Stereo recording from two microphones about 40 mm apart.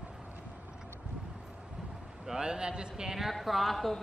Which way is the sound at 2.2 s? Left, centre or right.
Centre.